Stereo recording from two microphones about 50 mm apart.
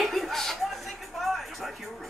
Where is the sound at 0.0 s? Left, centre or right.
Centre.